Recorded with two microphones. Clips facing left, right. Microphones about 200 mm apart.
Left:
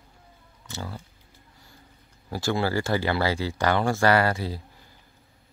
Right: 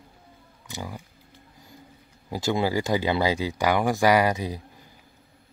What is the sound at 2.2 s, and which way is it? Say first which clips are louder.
Speech: right 1 dB; 20° right (ahead or behind).